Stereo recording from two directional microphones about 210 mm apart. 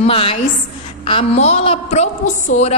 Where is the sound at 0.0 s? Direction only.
25° left (ahead or behind).